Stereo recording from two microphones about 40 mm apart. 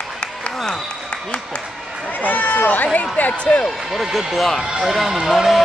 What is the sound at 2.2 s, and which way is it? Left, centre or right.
Run, left.